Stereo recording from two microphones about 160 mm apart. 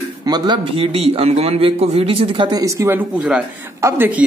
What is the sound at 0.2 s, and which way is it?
A man's voice, 25° right (ahead or behind).